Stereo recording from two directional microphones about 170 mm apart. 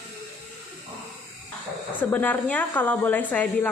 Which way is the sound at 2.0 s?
10° left (ahead or behind).